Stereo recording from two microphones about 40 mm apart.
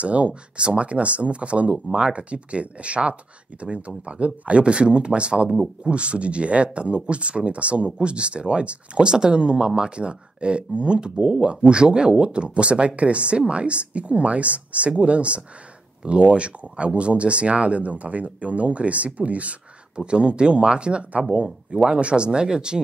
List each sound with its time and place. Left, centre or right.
0.0 s speech: right